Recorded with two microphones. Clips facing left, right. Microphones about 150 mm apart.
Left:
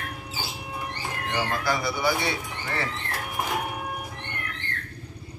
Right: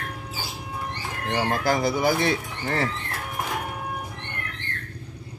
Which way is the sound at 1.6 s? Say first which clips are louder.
Right 4 dB; 45° right (ahead or behind).